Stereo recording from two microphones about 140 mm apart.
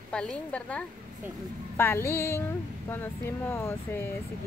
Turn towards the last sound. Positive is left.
turn(degrees=15)  # may be behind; listen again after turning